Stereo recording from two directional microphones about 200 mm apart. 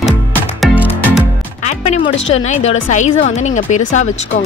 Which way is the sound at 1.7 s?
35° left (ahead or behind).